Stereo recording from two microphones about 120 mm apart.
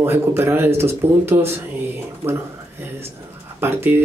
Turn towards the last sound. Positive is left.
turn(degrees=-20)  # may be behind; listen again after turning